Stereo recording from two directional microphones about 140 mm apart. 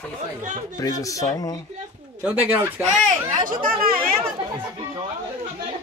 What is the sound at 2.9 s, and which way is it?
Speech, 70° right (ahead or behind).